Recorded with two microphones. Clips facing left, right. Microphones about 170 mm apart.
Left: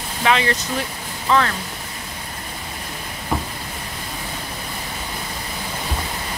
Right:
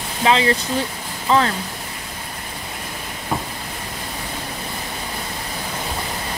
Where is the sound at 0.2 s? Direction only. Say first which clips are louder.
Right 2 dB; 25° right (ahead or behind).